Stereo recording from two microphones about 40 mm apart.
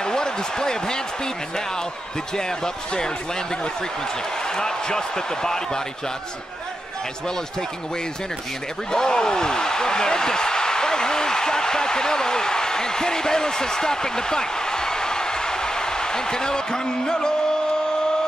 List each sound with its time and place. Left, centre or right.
0.0 s speech: centre
2.3 s speech: centre
8.9 s speech: centre